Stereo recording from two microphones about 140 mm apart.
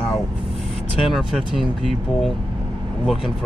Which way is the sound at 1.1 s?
Centre (ahead or behind).